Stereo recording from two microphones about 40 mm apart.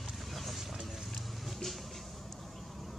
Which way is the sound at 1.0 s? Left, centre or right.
Centre.